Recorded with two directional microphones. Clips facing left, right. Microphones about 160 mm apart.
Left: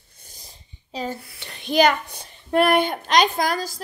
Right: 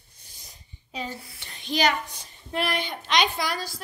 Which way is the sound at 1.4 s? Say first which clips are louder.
Left 7 dB; 65° left (ahead or behind).